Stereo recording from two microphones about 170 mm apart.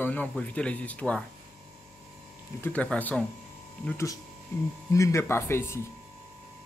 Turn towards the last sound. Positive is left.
turn(degrees=15)  # may be behind; listen again after turning